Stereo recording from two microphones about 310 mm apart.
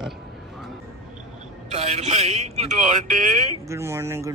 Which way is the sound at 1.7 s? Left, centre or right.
Centre.